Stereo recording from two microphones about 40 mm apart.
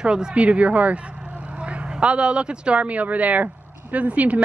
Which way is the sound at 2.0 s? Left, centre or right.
Right.